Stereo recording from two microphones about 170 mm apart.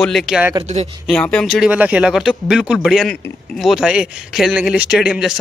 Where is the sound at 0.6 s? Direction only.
40° right (ahead or behind).